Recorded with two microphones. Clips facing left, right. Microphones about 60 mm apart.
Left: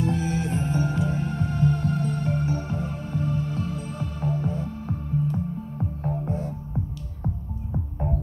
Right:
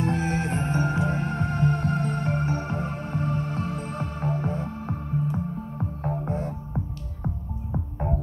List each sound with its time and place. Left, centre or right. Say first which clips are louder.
0.0 s music: even; right